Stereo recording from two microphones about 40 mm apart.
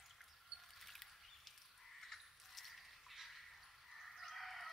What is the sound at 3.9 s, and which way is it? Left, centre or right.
Chicken, centre.